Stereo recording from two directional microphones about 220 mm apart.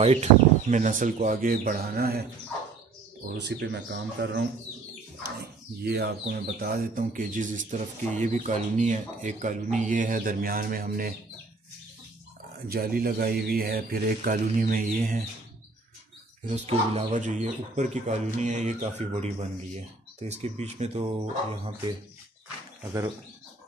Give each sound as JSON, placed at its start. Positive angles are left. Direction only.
{"t": 0.0, "sound": "speech", "side_deg": -30}
{"t": 3.3, "sound": "speech", "side_deg": -50}
{"t": 12.6, "sound": "speech", "side_deg": -40}
{"t": 16.4, "sound": "speech", "side_deg": -30}